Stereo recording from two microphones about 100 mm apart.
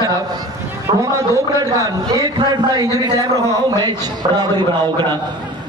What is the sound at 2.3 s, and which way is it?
Speech, 45° right (ahead or behind).